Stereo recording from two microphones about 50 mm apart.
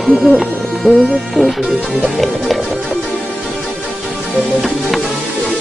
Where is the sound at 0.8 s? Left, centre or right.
Centre.